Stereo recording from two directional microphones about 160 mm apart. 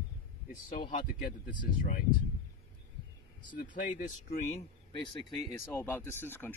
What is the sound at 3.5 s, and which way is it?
Speech, 55° left (ahead or behind).